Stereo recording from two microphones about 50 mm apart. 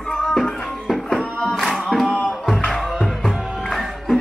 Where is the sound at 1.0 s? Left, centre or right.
Centre.